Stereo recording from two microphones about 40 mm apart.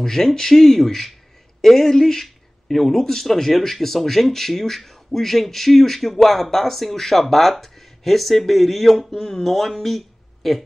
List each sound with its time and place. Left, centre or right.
0.0 s speech: centre